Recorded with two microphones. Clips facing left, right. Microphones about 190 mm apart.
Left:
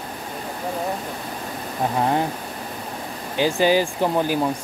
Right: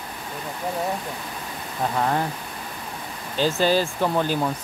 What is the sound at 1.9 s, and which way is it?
Speech, 20° left (ahead or behind).